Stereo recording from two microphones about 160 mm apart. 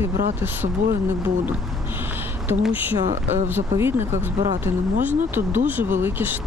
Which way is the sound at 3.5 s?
15° right (ahead or behind).